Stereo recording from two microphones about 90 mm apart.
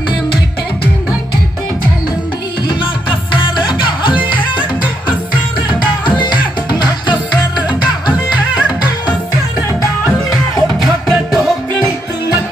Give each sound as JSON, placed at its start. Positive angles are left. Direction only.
{"t": 2.8, "sound": "music", "side_deg": 65}
{"t": 10.8, "sound": "music", "side_deg": -5}